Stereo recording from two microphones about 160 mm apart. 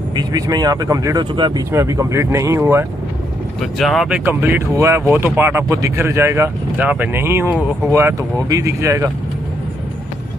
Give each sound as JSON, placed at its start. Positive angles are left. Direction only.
{"t": 0.1, "sound": "speech", "side_deg": -25}
{"t": 3.7, "sound": "speech", "side_deg": 0}
{"t": 4.2, "sound": "speech", "side_deg": -15}